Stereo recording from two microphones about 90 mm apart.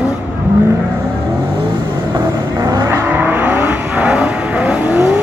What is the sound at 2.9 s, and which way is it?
Vehicle, 20° right (ahead or behind).